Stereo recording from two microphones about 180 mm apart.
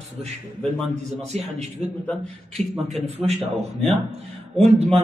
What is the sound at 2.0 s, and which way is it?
Speech, 5° left (ahead or behind).